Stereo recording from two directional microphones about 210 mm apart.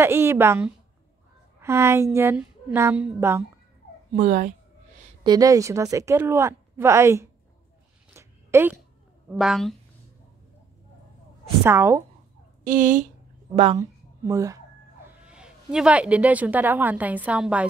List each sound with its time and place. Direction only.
0.0 s a woman's voice: 10° right (ahead or behind)
4.1 s speech: 35° right (ahead or behind)
5.2 s a woman's voice: 20° right (ahead or behind)
8.1 s a sound: 15° right (ahead or behind)
9.3 s a woman's voice: centre (ahead or behind)
11.6 s a woman's voice: 10° right (ahead or behind)
12.6 s speech: 40° right (ahead or behind)
13.7 s a woman's voice: 15° right (ahead or behind)
15.2 s a woman's voice: 5° right (ahead or behind)